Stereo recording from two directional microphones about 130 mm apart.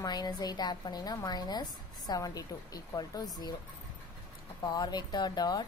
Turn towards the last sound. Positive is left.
turn(degrees=30)  # may be behind; listen again after turning